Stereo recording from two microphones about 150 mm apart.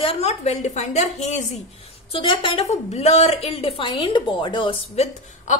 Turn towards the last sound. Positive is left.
turn(degrees=45)  # may be behind; listen again after turning